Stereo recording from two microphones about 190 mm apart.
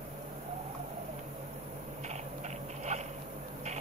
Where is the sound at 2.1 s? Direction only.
35° right (ahead or behind).